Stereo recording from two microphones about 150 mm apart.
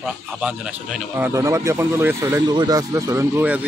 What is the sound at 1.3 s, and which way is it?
Speech, 20° right (ahead or behind).